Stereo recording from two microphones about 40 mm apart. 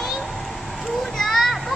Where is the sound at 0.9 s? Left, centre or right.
Centre.